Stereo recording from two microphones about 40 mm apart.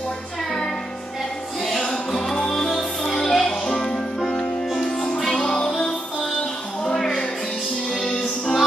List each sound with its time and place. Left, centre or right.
1.8 s music: left
6.9 s music: centre